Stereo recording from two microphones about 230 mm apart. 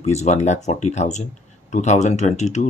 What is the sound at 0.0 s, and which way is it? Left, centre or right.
Speech, left.